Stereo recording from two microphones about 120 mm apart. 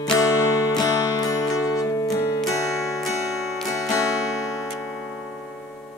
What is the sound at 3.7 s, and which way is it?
Music, 30° left (ahead or behind).